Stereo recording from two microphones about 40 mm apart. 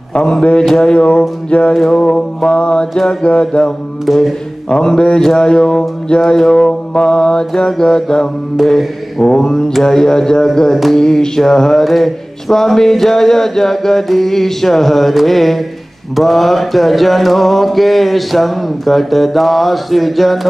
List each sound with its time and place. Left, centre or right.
0.2 s mantra: centre
0.8 s music: centre
1.7 s mantra: centre
2.1 s music: centre
2.9 s mantra: centre
3.2 s music: left
4.0 s mantra: centre
4.6 s music: centre
5.2 s mantra: centre